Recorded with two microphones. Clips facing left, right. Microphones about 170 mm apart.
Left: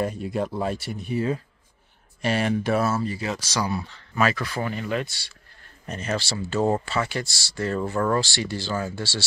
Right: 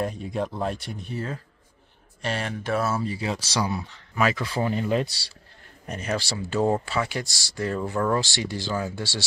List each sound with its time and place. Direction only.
0.0 s speech: centre (ahead or behind)
3.0 s speech: 20° right (ahead or behind)
5.9 s speech: 10° right (ahead or behind)